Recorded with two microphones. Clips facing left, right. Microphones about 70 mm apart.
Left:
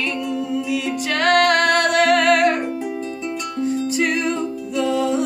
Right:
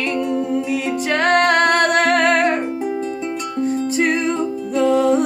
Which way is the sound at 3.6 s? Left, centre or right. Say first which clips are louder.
Right 2 dB; right.